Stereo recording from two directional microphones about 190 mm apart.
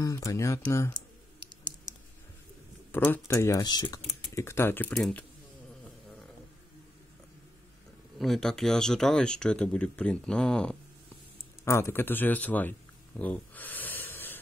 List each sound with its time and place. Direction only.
0.0 s speech: 15° left (ahead or behind)
2.9 s speech: 10° left (ahead or behind)
8.2 s speech: centre (ahead or behind)
13.2 s a sound: 10° left (ahead or behind)